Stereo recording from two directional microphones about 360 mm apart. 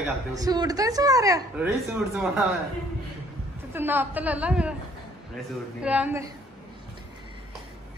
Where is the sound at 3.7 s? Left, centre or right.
Centre.